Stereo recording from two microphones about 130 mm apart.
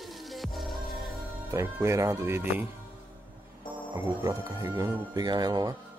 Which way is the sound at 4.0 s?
25° right (ahead or behind).